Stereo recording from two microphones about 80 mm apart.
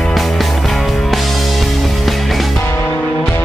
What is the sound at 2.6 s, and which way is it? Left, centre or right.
Music, left.